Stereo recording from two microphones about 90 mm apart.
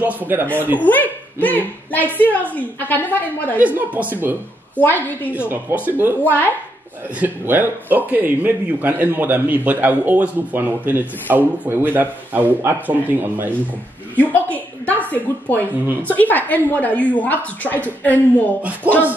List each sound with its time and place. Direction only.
0.0 s a man's voice: 20° right (ahead or behind)
0.8 s a woman's voice: 20° left (ahead or behind)
3.5 s a man's voice: 15° right (ahead or behind)
4.7 s a woman's voice: 20° left (ahead or behind)
5.5 s a man's voice: 25° right (ahead or behind)
6.2 s a woman's voice: 20° left (ahead or behind)
7.2 s a man's voice: 20° right (ahead or behind)
14.1 s a woman's voice: 20° left (ahead or behind)